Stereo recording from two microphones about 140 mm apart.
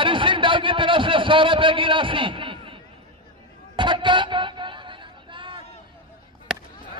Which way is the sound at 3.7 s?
35° right (ahead or behind).